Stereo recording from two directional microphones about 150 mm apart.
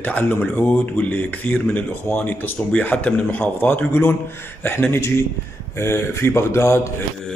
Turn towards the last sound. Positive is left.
turn(degrees=20)  # may be behind; listen again after turning